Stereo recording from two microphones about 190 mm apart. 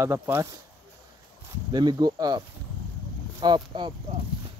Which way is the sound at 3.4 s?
25° right (ahead or behind).